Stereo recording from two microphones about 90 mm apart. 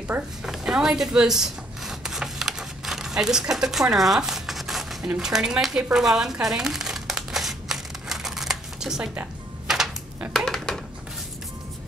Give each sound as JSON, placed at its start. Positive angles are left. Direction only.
{"t": 0.4, "sound": "rub", "side_deg": -5}
{"t": 5.0, "sound": "speech", "side_deg": -10}
{"t": 5.9, "sound": "crumpling", "side_deg": -5}
{"t": 10.3, "sound": "a sound", "side_deg": 5}